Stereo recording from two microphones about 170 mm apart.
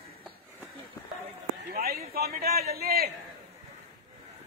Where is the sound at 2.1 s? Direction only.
65° right (ahead or behind).